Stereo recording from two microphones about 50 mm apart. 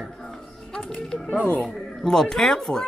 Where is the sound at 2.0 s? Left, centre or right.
Centre.